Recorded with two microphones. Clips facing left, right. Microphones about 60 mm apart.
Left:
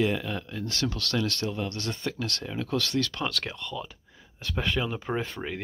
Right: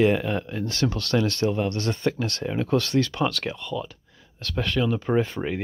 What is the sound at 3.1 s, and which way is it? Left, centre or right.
Speech, centre.